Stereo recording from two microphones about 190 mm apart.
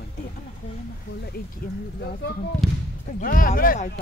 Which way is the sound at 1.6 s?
50° left (ahead or behind).